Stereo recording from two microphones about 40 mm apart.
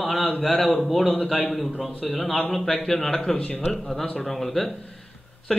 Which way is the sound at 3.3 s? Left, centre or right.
Left.